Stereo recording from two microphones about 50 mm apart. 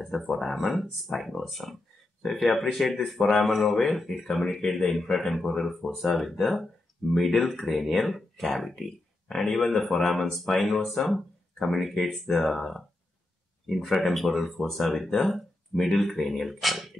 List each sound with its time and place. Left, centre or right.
0.3 s speech: centre